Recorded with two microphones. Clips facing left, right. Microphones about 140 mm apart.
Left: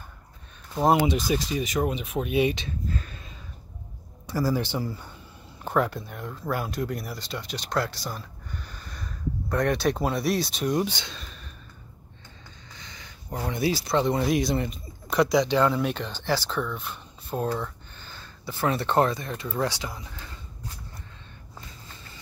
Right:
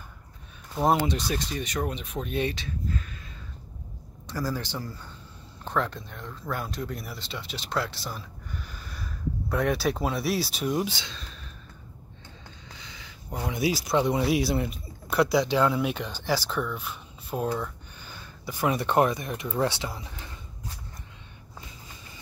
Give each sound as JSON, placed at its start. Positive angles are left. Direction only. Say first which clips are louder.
{"t": 0.9, "sound": "speech", "louder": "left 4 dB", "side_deg": 10}
{"t": 2.9, "sound": "a sound", "louder": "left 1 dB", "side_deg": 35}
{"t": 4.3, "sound": "speech", "louder": "left 5 dB", "side_deg": 10}
{"t": 12.8, "sound": "speech", "louder": "even", "side_deg": -5}